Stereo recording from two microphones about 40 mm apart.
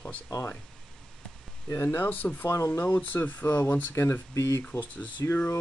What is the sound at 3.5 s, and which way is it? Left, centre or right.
Speech, left.